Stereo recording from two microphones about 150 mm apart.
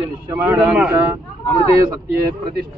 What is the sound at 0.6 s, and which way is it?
Speech, 10° right (ahead or behind).